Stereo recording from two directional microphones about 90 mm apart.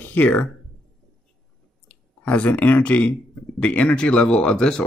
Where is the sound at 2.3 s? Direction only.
15° left (ahead or behind).